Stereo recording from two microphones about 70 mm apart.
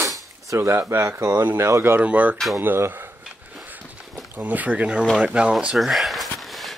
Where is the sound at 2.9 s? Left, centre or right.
Right.